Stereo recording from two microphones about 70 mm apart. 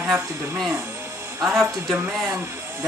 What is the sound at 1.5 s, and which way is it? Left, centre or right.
Speech, centre.